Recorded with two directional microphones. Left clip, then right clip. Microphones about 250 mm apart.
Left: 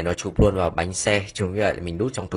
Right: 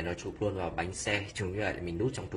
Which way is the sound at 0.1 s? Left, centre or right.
Left.